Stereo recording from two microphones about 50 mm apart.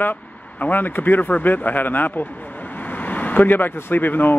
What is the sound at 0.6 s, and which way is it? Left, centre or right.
Speech, left.